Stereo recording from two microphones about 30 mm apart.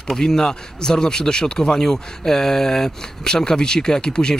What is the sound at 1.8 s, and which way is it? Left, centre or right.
Speech, centre.